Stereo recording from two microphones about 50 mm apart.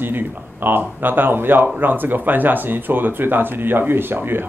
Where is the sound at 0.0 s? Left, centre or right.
Right.